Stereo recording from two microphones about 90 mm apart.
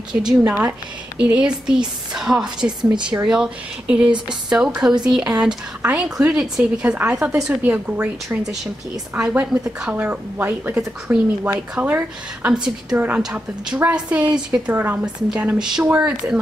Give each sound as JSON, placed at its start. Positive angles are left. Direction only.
{"t": 0.1, "sound": "a woman's voice", "side_deg": -15}
{"t": 2.8, "sound": "a woman's voice", "side_deg": -60}
{"t": 3.2, "sound": "a woman's voice", "side_deg": -10}
{"t": 11.8, "sound": "a woman's voice", "side_deg": -25}
{"t": 12.4, "sound": "a woman's voice", "side_deg": -10}
{"t": 15.3, "sound": "a woman's voice", "side_deg": -10}